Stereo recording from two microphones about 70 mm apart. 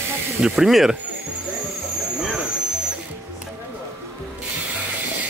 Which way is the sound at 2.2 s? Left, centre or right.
Centre.